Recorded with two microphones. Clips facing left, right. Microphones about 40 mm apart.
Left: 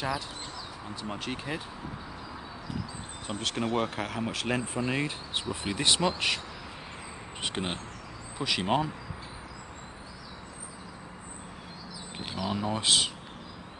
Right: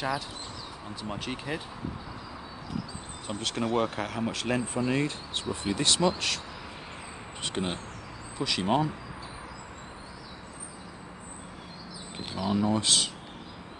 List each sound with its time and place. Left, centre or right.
1.0 s speech: centre
3.3 s speech: centre
7.4 s speech: centre
12.4 s speech: centre